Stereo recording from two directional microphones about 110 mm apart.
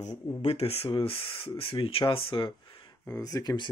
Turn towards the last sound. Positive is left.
turn(degrees=35)  # may be behind; listen again after turning